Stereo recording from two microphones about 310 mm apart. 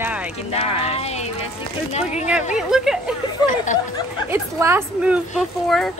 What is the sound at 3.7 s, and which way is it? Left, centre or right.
Speech, left.